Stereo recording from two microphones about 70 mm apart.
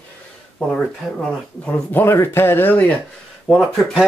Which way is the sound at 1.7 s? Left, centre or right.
Left.